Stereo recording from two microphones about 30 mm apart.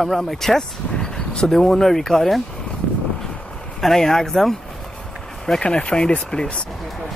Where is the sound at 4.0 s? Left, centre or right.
Centre.